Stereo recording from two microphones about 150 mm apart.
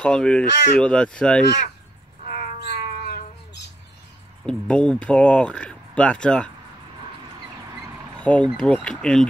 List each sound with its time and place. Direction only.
0.0 s speech: 5° left (ahead or behind)
2.2 s cat: 65° left (ahead or behind); by 3.6 s 90° left
4.5 s speech: 5° left (ahead or behind)
8.2 s speech: 10° left (ahead or behind)